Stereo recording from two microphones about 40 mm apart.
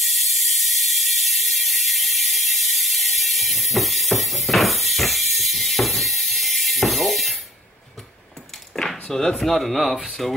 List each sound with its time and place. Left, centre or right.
0.0 s ratchet: centre
8.7 s a sound: centre
9.1 s speech: centre